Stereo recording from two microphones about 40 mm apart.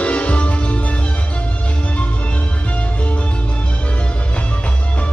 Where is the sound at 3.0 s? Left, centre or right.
Left.